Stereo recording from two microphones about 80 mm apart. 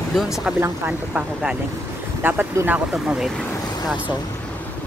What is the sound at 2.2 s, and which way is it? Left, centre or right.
Speech, right.